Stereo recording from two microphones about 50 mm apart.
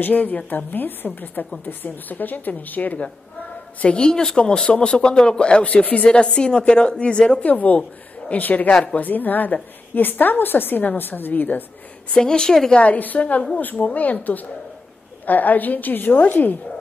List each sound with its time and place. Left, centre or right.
0.0 s a woman's voice: left
3.8 s speech: centre
7.4 s a woman's voice: left
12.1 s a woman's voice: centre
12.7 s a woman's voice: left